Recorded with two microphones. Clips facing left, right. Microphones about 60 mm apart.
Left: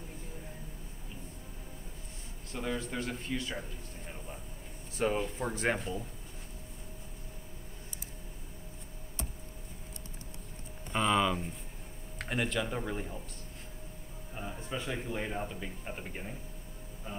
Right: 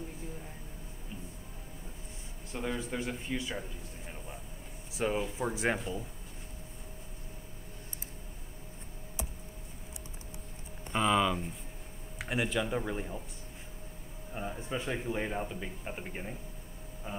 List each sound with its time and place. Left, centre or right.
2.5 s speech: centre
4.9 s speech: centre
10.9 s speech: centre
14.3 s speech: centre
17.1 s a sound: centre